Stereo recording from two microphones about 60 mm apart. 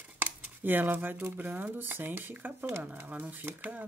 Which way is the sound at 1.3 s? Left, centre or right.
Right.